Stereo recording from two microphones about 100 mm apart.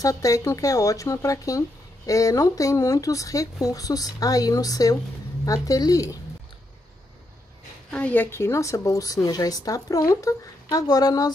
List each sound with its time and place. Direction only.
0.0 s speech: 35° left (ahead or behind)
7.9 s speech: 15° left (ahead or behind); by 11.2 s 40° left (ahead or behind)